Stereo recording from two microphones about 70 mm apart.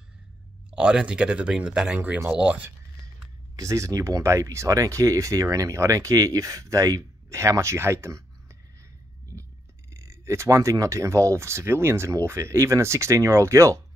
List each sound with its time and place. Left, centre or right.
0.7 s speech: centre
3.5 s speech: right
9.3 s a sound: right
9.9 s speech: right